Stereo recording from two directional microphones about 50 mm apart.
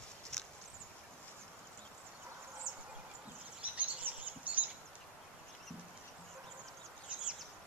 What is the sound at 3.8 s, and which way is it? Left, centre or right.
Chirp, right.